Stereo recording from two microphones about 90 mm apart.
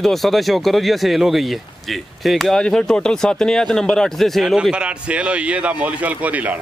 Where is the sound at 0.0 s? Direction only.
Centre (ahead or behind).